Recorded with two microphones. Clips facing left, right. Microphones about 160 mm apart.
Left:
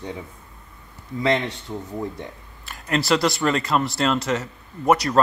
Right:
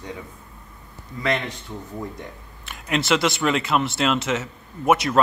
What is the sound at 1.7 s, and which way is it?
Speech, 20° left (ahead or behind).